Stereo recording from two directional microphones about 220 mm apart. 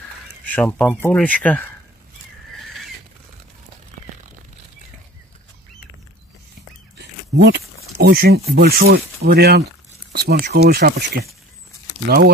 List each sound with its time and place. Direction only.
0.5 s speech: 5° left (ahead or behind)
7.0 s a sound: 50° right (ahead or behind)
8.5 s speech: 45° right (ahead or behind)